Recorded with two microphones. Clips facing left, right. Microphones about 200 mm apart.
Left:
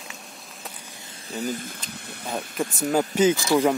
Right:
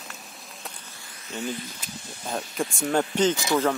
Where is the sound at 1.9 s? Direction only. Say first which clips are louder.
Left 2 dB; 60° left (ahead or behind).